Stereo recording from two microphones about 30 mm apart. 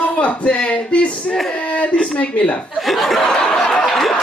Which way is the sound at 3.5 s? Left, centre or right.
Centre.